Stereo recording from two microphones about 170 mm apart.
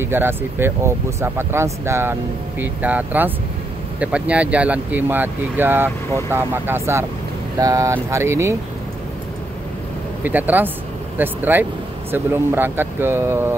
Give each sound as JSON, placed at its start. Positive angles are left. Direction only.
{"t": 0.0, "sound": "speech", "side_deg": -10}
{"t": 10.2, "sound": "speech", "side_deg": -10}